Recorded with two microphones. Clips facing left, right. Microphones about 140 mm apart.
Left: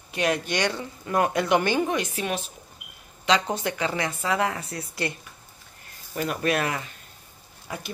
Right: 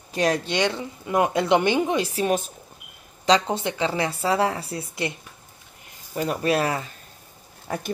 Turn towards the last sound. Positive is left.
turn(degrees=-45)  # may be behind; listen again after turning